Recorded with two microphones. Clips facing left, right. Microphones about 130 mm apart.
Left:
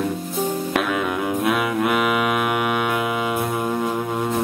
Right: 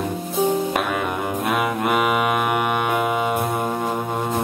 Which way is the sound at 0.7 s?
Centre (ahead or behind).